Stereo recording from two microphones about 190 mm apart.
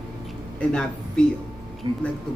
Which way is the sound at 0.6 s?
5° left (ahead or behind).